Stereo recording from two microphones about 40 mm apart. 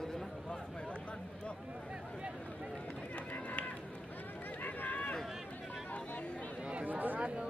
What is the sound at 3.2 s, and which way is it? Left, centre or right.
Run, left.